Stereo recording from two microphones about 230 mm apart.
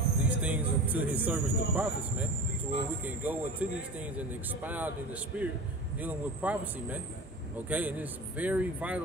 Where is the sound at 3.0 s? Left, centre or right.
Centre.